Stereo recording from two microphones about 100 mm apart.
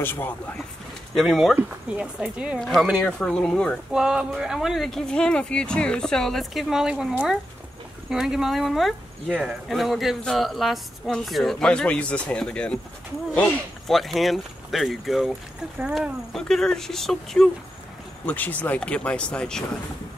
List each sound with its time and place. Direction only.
0.0 s speech: 20° left (ahead or behind)
1.1 s speech: centre (ahead or behind)
2.6 s speech: centre (ahead or behind)
3.9 s speech: 5° right (ahead or behind); by 12.7 s 10° left (ahead or behind)
13.8 s speech: centre (ahead or behind)
18.2 s speech: 15° left (ahead or behind)